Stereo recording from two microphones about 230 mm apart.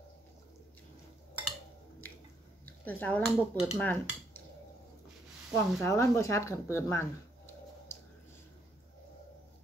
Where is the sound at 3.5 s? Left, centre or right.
Centre.